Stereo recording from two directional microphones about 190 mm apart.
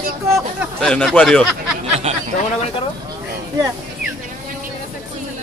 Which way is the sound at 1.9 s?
35° right (ahead or behind).